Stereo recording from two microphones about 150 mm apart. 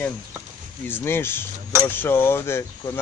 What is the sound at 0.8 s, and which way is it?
Speech, 15° left (ahead or behind).